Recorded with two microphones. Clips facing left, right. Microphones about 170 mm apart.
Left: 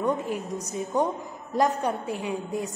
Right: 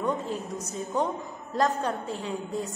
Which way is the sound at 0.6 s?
15° left (ahead or behind).